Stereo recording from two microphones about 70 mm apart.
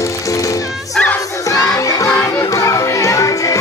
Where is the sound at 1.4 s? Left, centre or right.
Left.